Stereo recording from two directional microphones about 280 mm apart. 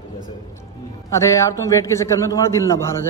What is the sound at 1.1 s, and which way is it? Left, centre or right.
A woman's voice, centre.